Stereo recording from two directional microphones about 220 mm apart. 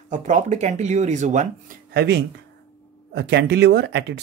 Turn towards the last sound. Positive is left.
turn(degrees=-50)  # may be behind; listen again after turning